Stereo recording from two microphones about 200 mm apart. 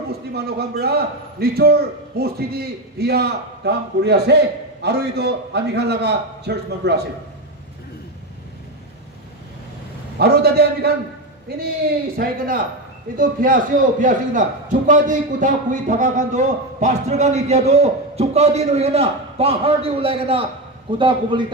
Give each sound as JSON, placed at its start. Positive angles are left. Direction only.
{"t": 0.3, "sound": "a man's voice", "side_deg": -55}
{"t": 10.1, "sound": "a man's voice", "side_deg": -55}
{"t": 12.2, "sound": "a man's voice", "side_deg": -45}